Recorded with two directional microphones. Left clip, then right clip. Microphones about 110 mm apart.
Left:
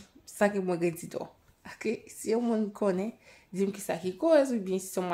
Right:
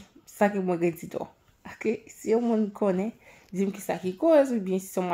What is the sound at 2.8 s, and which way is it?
Speech, 30° right (ahead or behind).